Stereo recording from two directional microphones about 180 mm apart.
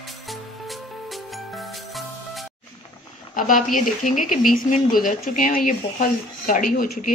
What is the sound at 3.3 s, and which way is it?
Speech, 50° left (ahead or behind).